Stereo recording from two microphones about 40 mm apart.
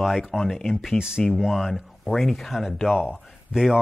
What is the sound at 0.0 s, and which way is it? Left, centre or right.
Speech, centre.